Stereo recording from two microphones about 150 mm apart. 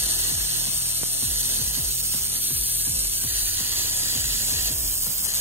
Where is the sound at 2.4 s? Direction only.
15° right (ahead or behind).